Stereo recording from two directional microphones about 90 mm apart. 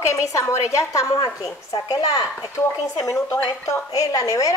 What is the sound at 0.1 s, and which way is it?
A woman's voice, 35° left (ahead or behind).